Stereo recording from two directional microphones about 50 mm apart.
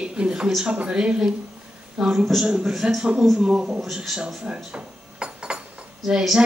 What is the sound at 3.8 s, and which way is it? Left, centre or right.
Speech, centre.